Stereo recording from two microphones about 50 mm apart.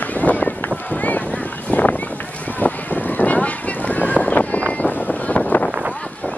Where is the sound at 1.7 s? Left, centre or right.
Left.